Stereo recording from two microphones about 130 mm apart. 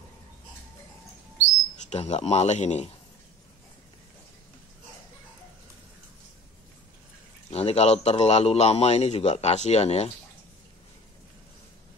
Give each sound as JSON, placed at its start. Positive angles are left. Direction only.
{"t": 1.9, "sound": "a man's voice", "side_deg": 55}
{"t": 7.5, "sound": "a man's voice", "side_deg": 55}